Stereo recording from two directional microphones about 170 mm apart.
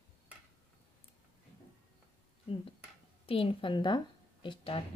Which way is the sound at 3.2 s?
35° left (ahead or behind).